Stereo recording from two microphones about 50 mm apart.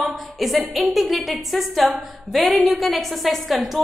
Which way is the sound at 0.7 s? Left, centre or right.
Centre.